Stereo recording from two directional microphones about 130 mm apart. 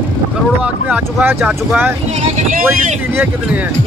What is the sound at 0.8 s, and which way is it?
Speech, 10° right (ahead or behind).